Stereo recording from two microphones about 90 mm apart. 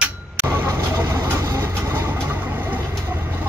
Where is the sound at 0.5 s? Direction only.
30° right (ahead or behind).